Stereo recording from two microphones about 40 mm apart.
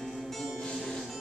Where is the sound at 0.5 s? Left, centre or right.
Left.